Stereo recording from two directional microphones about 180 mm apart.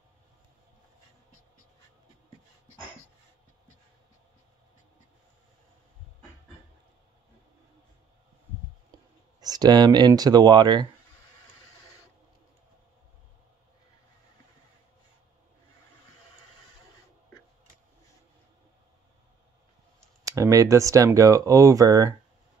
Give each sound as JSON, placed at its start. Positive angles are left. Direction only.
{"t": 8.9, "sound": "speech", "side_deg": -20}
{"t": 20.2, "sound": "speech", "side_deg": -20}